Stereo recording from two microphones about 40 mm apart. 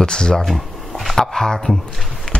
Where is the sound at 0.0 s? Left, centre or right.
Centre.